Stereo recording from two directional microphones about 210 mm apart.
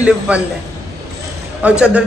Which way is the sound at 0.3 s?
5° right (ahead or behind).